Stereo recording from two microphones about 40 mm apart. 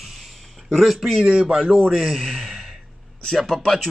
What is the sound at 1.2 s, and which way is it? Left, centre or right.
Speech, right.